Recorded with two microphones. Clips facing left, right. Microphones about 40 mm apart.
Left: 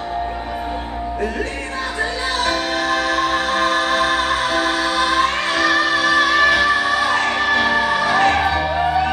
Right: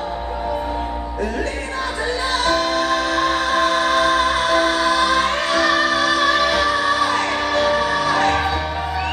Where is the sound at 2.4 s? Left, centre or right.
Centre.